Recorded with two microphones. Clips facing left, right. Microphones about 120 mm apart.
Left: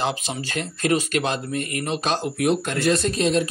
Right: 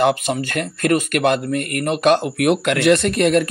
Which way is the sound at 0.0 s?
55° right (ahead or behind).